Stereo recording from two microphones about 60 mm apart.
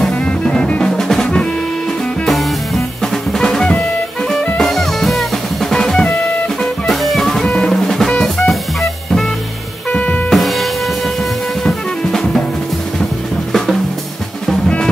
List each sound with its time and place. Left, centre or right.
0.5 s music: centre
0.9 s drum: centre
2.2 s drum kit: centre
4.6 s music: centre
6.6 s drum kit: centre
9.9 s music: left
10.3 s music: centre
11.6 s drum kit: centre
13.5 s drum: centre